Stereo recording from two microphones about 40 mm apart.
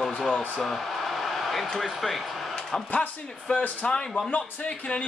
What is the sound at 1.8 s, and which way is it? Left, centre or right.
Speech, centre.